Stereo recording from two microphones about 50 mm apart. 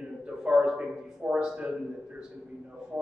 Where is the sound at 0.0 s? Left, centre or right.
Centre.